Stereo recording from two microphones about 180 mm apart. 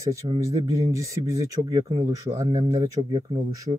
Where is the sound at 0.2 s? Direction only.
35° right (ahead or behind).